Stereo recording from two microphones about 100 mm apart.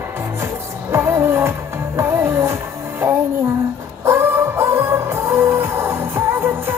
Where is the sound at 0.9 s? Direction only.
25° right (ahead or behind).